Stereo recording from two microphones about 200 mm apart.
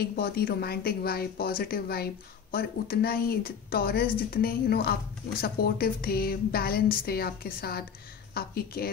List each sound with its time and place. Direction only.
0.0 s speech: 50° left (ahead or behind)